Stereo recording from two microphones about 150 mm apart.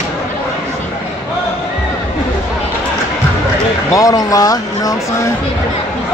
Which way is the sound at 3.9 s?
25° left (ahead or behind).